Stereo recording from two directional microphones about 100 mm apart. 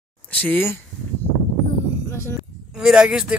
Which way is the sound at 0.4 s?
20° left (ahead or behind).